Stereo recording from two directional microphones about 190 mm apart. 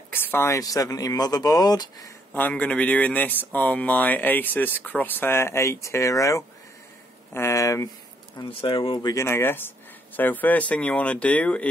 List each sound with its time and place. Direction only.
0.1 s speech: 10° left (ahead or behind)
8.4 s speech: 30° left (ahead or behind); by 11.6 s 5° left (ahead or behind)